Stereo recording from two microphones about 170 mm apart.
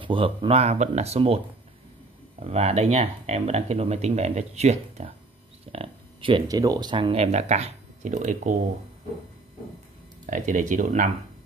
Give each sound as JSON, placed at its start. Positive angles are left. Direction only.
{"t": 0.0, "sound": "speech", "side_deg": -30}
{"t": 2.5, "sound": "speech", "side_deg": -40}
{"t": 10.2, "sound": "speech", "side_deg": -50}